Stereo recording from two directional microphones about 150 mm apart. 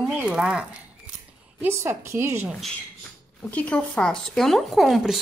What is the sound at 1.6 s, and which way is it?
Speech, 15° right (ahead or behind).